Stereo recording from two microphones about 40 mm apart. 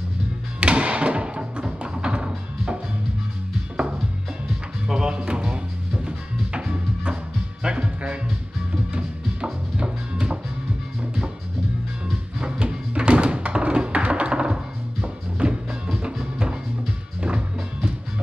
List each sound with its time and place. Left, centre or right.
0.6 s music: right
12.4 s music: right